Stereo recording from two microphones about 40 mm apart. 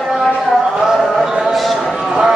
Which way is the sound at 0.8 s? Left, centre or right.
Centre.